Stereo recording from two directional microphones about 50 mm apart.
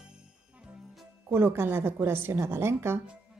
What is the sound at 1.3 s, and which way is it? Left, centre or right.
A woman's voice, right.